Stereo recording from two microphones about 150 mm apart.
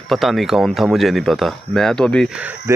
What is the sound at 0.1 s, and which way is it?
Speech, centre (ahead or behind).